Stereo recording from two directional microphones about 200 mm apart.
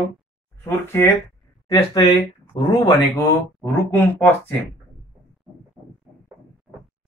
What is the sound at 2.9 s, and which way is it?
Speech, 10° left (ahead or behind).